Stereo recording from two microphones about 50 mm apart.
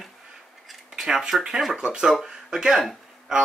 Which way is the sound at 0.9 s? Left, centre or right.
Centre.